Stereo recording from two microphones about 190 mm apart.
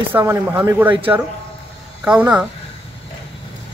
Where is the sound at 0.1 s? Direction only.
10° right (ahead or behind).